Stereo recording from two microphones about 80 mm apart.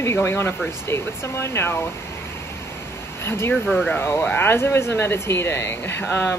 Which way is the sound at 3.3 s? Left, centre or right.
Left.